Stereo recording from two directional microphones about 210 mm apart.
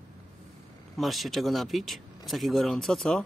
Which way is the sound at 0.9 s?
Centre (ahead or behind).